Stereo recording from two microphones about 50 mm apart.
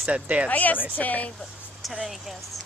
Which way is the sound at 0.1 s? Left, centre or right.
Right.